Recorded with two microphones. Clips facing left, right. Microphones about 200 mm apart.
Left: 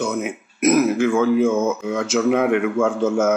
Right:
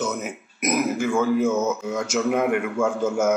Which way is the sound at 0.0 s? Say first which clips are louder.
Left 4 dB; 10° left (ahead or behind).